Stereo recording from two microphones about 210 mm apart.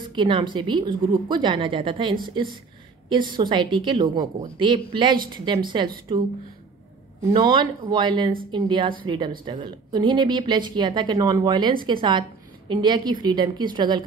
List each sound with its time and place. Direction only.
0.1 s a woman's voice: 20° right (ahead or behind)
7.3 s a woman's voice: 20° right (ahead or behind)